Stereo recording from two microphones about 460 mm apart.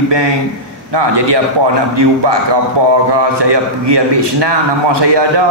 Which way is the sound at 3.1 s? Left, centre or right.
Right.